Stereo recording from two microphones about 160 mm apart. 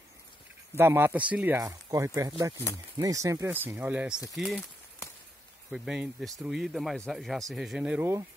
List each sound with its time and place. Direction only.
0.7 s speech: 15° right (ahead or behind)
1.6 s speech: 20° right (ahead or behind)
4.4 s speech: centre (ahead or behind)
5.7 s speech: centre (ahead or behind)